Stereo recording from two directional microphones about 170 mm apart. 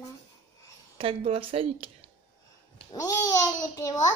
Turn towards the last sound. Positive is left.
turn(degrees=20)  # may be behind; listen again after turning